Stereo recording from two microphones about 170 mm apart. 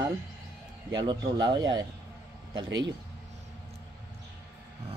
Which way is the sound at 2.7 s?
90° right.